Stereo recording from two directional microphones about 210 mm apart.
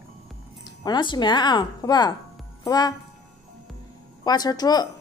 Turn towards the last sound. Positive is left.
turn(degrees=20)  # may be behind; listen again after turning